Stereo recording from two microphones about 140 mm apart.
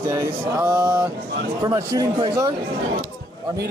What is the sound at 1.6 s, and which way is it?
Speech, 25° right (ahead or behind).